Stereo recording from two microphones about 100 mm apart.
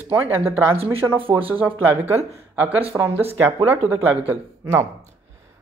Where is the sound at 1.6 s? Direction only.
20° right (ahead or behind).